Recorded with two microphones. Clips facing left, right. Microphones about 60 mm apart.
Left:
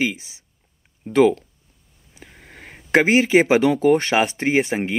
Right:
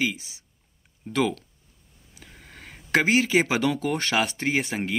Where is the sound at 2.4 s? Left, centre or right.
Left.